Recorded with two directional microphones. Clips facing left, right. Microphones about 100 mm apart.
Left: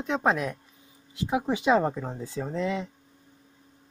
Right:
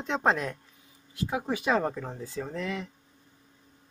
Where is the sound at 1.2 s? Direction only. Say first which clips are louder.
Left 4 dB; 20° left (ahead or behind).